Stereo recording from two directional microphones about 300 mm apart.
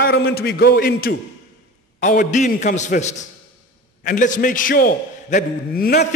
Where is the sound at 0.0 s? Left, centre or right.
Left.